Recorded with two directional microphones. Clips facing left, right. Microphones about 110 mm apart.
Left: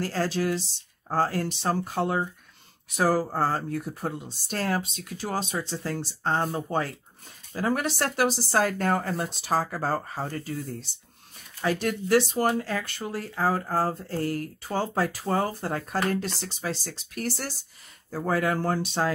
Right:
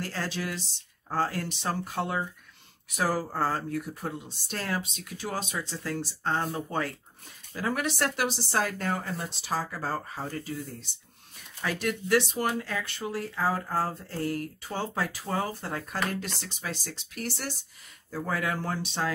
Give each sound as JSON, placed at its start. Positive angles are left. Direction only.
{"t": 0.0, "sound": "speech", "side_deg": 35}